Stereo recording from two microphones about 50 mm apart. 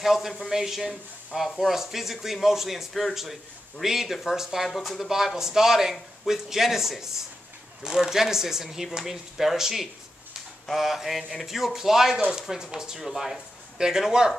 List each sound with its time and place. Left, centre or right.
0.0 s a man's voice: centre